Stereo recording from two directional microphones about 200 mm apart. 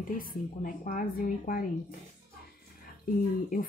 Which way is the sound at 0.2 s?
45° left (ahead or behind).